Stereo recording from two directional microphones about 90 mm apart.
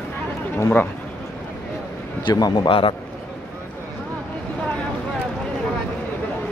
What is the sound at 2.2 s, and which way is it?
Speech, 55° left (ahead or behind).